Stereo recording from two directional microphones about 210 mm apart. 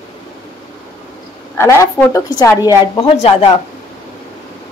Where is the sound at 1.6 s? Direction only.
15° left (ahead or behind).